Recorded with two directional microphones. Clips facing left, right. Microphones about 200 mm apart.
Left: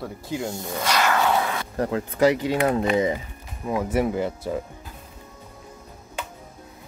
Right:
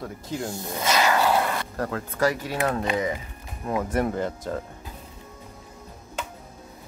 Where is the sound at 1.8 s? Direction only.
15° left (ahead or behind).